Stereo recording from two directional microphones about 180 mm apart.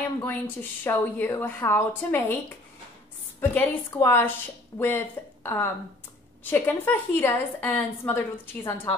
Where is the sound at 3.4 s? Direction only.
15° left (ahead or behind).